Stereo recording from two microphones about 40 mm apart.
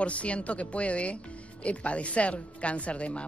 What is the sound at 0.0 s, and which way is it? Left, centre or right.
A woman's voice, left.